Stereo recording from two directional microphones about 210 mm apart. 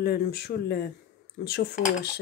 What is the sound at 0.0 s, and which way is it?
Speech, 45° left (ahead or behind).